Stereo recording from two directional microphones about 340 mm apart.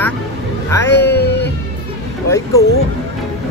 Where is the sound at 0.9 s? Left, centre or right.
Left.